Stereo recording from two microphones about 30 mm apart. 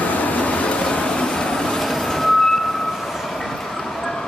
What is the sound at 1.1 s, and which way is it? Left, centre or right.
Vehicle, left.